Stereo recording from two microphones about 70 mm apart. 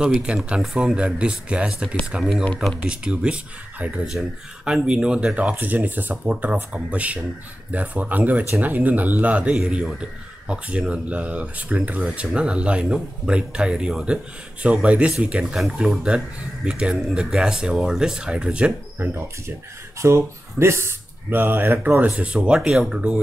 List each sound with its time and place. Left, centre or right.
0.0 s a man's voice: centre
4.1 s a man's voice: centre
18.9 s speech: right
20.0 s speech: right; by 23.2 s centre